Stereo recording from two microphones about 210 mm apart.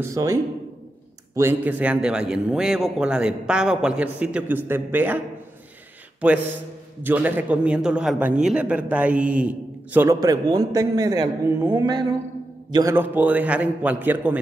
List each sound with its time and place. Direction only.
0.0 s a man's voice: 15° right (ahead or behind)
7.0 s speech: 10° right (ahead or behind)